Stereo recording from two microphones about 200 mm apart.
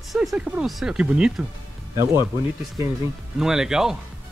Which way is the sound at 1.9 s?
15° right (ahead or behind).